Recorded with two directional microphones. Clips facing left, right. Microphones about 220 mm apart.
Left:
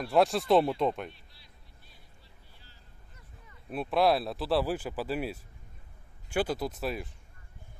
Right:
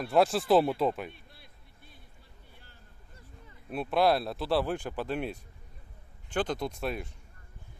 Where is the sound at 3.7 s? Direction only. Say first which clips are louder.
Even; centre (ahead or behind).